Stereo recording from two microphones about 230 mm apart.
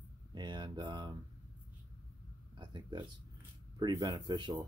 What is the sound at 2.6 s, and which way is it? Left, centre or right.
Speech, centre.